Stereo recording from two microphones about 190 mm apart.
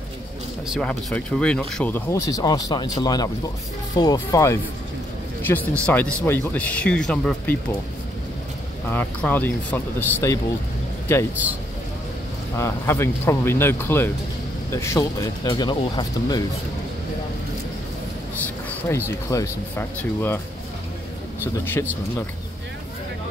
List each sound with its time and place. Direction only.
0.7 s speech: 5° left (ahead or behind)
8.9 s speech: 10° left (ahead or behind)
12.5 s speech: 15° left (ahead or behind)
18.7 s speech: 10° left (ahead or behind)